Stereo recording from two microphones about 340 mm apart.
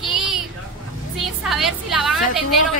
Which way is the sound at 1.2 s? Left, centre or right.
Centre.